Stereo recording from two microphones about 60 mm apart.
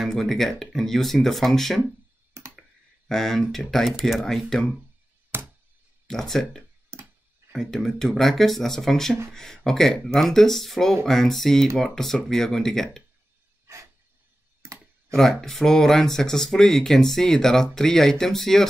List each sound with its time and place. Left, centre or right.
0.0 s speech: centre
2.4 s computer keyboard: right
3.1 s speech: centre
5.3 s a sound: right
6.0 s speech: centre
6.9 s tick-tock: right
7.5 s speech: centre
14.6 s a sound: right
15.1 s speech: centre